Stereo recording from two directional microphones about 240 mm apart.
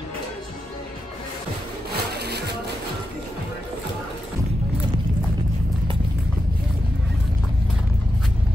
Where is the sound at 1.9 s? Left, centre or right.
Right.